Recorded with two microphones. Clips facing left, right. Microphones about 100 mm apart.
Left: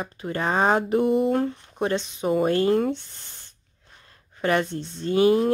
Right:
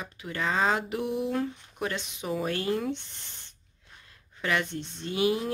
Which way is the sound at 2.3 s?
45° left (ahead or behind).